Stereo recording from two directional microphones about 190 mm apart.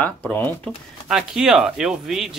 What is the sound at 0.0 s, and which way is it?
Speech, 10° left (ahead or behind).